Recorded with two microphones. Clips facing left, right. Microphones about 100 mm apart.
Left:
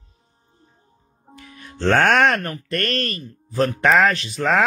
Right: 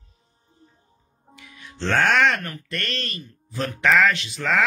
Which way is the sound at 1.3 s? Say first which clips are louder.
Left 4 dB; 45° left (ahead or behind).